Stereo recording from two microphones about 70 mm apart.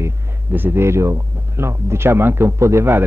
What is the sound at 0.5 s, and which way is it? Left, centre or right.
Speech, right.